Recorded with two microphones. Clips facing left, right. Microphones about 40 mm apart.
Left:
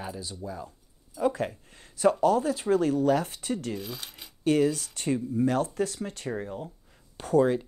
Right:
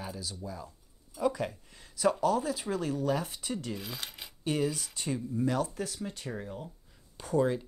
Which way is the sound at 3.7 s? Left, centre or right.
Centre.